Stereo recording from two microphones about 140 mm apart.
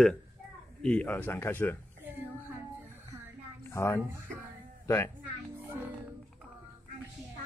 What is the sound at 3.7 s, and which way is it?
Speech, 20° left (ahead or behind).